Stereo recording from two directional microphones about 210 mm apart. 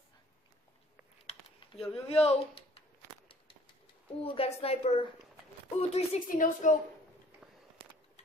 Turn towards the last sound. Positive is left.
turn(degrees=40)  # may be behind; listen again after turning